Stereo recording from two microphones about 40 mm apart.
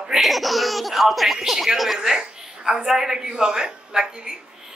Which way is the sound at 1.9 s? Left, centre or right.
Centre.